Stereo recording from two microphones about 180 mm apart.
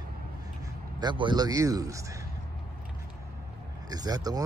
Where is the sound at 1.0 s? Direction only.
25° right (ahead or behind).